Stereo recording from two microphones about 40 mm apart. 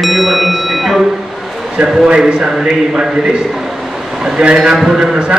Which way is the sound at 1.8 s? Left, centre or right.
Right.